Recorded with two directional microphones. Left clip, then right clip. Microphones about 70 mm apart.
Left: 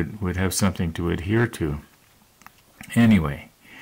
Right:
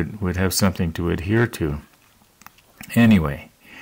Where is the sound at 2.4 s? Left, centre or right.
Centre.